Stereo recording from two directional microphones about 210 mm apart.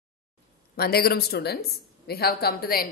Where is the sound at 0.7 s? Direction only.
50° left (ahead or behind).